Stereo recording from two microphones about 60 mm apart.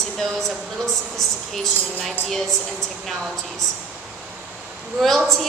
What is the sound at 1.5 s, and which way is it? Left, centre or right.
Speech, centre.